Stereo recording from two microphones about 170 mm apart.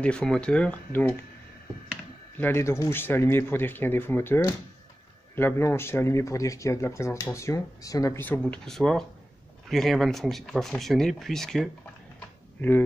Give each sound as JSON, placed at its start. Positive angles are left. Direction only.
{"t": 0.0, "sound": "speech", "side_deg": 5}
{"t": 2.3, "sound": "speech", "side_deg": 15}